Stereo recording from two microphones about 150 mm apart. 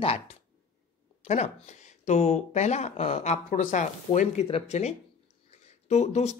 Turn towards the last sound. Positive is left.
turn(degrees=50)  # may be behind; listen again after turning